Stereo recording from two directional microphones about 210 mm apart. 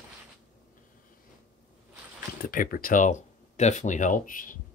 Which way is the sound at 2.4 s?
40° left (ahead or behind).